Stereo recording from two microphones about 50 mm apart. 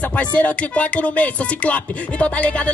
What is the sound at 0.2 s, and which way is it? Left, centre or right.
Music, left.